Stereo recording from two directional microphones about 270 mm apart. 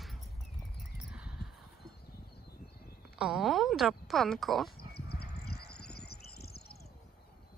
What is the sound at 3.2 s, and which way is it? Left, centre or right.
Speech, centre.